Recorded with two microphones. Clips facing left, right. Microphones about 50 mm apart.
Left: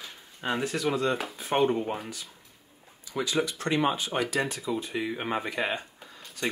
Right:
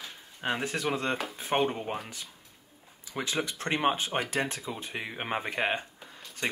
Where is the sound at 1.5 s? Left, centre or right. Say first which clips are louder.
Left 3 dB; centre.